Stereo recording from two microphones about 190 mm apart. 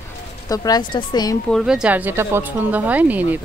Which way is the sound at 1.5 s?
Centre (ahead or behind).